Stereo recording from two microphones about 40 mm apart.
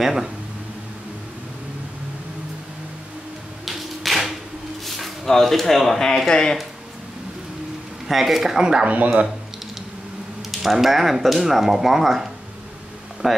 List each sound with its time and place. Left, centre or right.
0.0 s speech: centre
3.6 s a sound: centre
4.8 s speech: centre
8.1 s speech: centre
8.5 s speech: centre
8.8 s speech: right
10.6 s speech: centre